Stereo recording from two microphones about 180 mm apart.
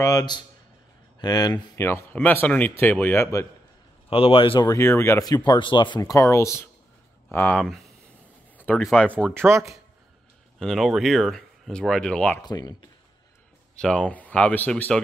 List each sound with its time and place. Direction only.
0.0 s speech: 20° left (ahead or behind)
4.1 s speech: 30° left (ahead or behind)
4.6 s speech: 15° left (ahead or behind)
9.1 s speech: 10° right (ahead or behind)
10.6 s speech: centre (ahead or behind)
12.4 s speech: 20° left (ahead or behind)
13.7 s speech: 5° left (ahead or behind)